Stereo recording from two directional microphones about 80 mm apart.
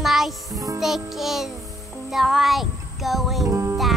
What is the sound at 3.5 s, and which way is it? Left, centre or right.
Music, right.